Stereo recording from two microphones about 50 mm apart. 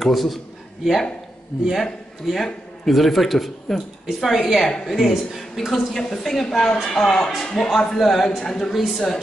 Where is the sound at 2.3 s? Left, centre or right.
Centre.